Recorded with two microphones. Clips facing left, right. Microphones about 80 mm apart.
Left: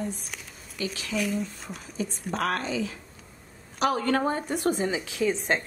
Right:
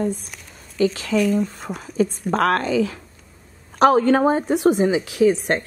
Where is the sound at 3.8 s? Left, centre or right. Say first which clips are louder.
Right 11 dB; right.